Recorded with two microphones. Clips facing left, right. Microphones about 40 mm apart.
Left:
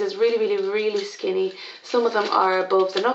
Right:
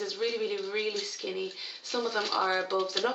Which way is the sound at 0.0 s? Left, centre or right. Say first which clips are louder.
Left 11 dB; centre.